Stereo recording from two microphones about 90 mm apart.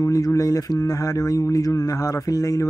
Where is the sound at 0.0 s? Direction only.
40° left (ahead or behind).